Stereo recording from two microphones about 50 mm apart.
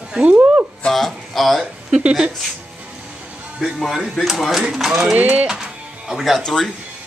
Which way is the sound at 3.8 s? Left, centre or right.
Centre.